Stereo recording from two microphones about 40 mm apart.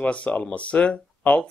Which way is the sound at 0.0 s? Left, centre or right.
Left.